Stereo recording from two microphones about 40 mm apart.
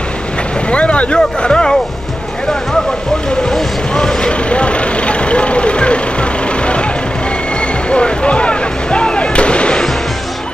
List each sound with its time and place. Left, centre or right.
0.7 s speech: left
3.4 s vehicle: centre
7.9 s artillery fire: left